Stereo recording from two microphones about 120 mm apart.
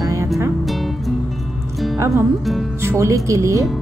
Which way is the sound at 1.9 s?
25° right (ahead or behind).